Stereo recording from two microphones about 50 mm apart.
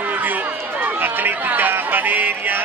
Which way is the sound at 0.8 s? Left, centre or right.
Right.